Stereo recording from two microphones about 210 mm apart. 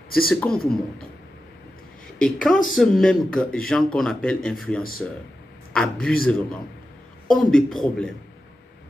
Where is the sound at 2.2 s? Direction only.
5° left (ahead or behind).